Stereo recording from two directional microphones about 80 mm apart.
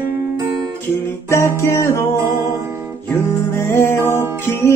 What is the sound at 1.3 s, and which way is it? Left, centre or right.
Music, left.